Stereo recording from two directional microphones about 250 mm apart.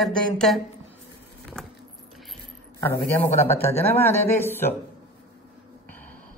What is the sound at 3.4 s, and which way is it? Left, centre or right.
Speech, centre.